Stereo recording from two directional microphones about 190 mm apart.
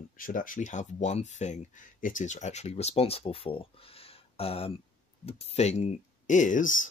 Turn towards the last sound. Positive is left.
turn(degrees=45)  # may be behind; listen again after turning